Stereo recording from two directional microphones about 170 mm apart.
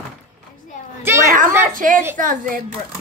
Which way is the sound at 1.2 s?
50° right (ahead or behind).